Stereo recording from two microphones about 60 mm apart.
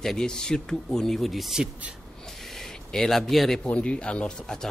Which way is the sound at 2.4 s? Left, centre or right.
Centre.